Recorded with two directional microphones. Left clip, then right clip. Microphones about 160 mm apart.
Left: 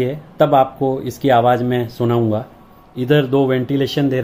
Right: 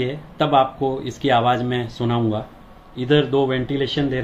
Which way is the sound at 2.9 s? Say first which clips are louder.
Left 3 dB; 80° left.